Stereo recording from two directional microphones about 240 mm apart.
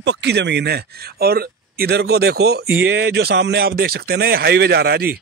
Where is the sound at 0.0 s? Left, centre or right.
Right.